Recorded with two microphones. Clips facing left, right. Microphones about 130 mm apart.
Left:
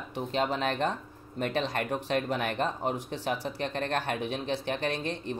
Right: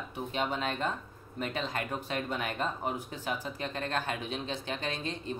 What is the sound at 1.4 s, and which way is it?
Speech, 60° left (ahead or behind).